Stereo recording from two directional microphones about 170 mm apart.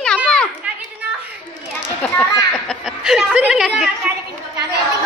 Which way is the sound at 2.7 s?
5° right (ahead or behind).